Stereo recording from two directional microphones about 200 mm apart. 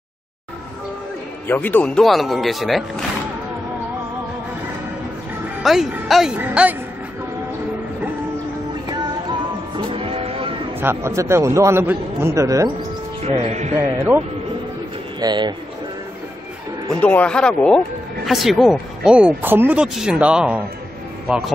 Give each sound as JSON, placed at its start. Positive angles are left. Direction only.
{"t": 1.5, "sound": "speech", "side_deg": 10}
{"t": 5.6, "sound": "speech", "side_deg": 0}
{"t": 9.8, "sound": "music", "side_deg": -25}
{"t": 10.8, "sound": "a man's voice", "side_deg": -10}
{"t": 13.3, "sound": "speech", "side_deg": -30}
{"t": 13.7, "sound": "a man's voice", "side_deg": -10}
{"t": 15.1, "sound": "speech", "side_deg": -20}
{"t": 17.0, "sound": "speech", "side_deg": 5}